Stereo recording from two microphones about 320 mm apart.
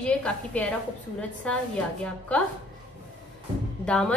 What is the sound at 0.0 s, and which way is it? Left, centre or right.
Speech, centre.